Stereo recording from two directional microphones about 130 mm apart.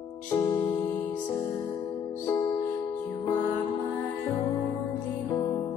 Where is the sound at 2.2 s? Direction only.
25° left (ahead or behind).